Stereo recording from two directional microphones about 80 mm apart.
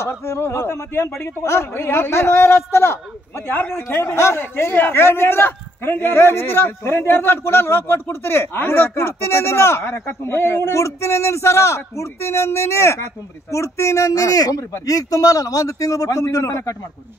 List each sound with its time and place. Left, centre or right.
0.0 s a man's voice: left